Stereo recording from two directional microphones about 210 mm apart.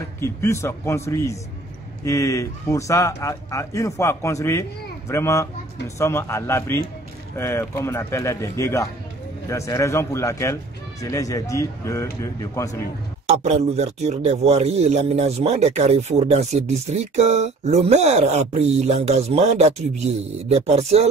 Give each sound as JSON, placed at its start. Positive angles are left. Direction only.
{"t": 0.2, "sound": "a man's voice", "side_deg": 15}
{"t": 13.3, "sound": "a man's voice", "side_deg": -35}